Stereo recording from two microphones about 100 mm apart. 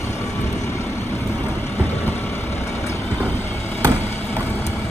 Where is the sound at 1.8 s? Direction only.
20° left (ahead or behind).